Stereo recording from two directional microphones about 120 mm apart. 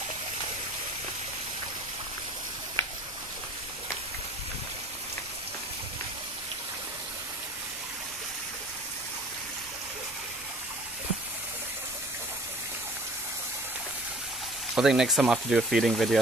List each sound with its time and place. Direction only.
14.8 s speech: 5° right (ahead or behind)